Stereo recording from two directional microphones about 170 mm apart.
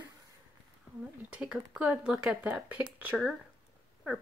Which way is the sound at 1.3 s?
5° right (ahead or behind).